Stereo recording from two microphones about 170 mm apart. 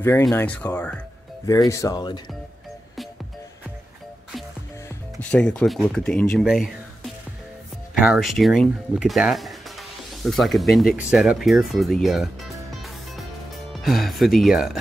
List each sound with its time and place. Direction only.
0.0 s speech: 15° left (ahead or behind)
1.4 s speech: 20° left (ahead or behind)
4.8 s speech: 5° left (ahead or behind)
8.0 s speech: 5° right (ahead or behind)
12.8 s music: centre (ahead or behind)
13.7 s speech: centre (ahead or behind)